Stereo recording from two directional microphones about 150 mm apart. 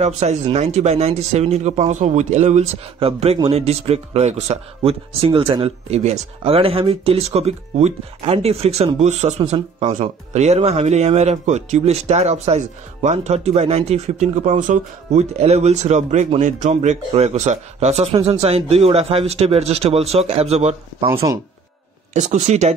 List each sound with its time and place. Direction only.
0.0 s speech: 45° right (ahead or behind)
22.1 s speech: 50° right (ahead or behind)